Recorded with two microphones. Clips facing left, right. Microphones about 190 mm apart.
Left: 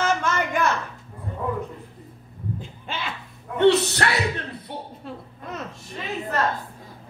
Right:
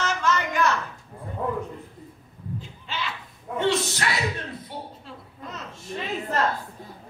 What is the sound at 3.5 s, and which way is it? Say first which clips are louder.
Speech: left 7 dB; 65° left (ahead or behind).